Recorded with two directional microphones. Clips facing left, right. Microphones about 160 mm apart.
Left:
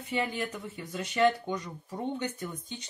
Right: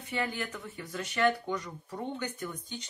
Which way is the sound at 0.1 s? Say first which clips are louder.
Left 2 dB; 20° left (ahead or behind).